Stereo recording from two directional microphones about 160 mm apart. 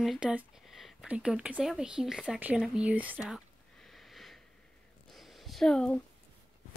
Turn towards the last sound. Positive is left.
turn(degrees=5)  # may be behind; listen again after turning